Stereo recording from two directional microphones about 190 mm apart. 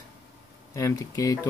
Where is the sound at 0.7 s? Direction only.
15° left (ahead or behind).